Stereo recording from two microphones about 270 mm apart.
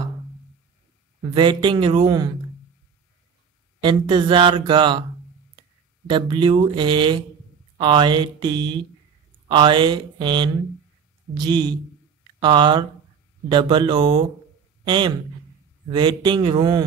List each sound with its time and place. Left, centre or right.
1.3 s speech: centre
3.8 s speech: centre
6.0 s speech: centre